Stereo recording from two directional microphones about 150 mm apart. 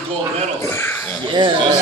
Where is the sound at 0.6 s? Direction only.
15° left (ahead or behind).